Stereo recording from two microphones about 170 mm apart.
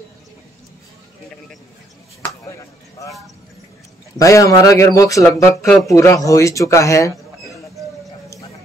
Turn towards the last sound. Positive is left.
turn(degrees=20)  # may be behind; listen again after turning